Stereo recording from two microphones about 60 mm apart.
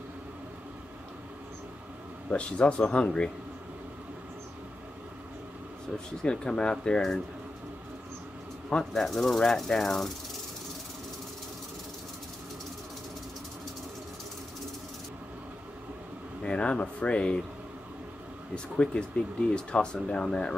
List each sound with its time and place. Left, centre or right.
2.3 s speech: centre
5.9 s speech: centre
8.6 s speech: centre
16.4 s speech: centre
18.5 s speech: centre